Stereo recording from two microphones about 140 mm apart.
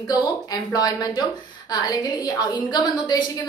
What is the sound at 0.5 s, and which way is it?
A woman's voice, 30° left (ahead or behind).